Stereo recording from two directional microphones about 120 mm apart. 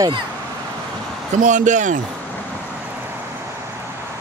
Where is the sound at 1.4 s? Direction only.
90° right.